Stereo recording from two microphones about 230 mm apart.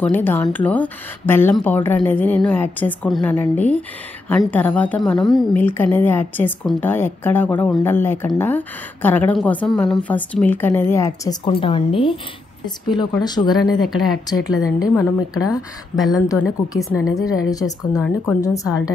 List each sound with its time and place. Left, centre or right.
0.0 s a woman's voice: centre
13.8 s speech: centre
14.6 s a woman's voice: centre